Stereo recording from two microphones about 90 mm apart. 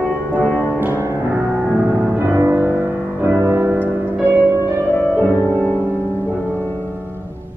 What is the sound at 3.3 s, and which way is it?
Music, 35° right (ahead or behind).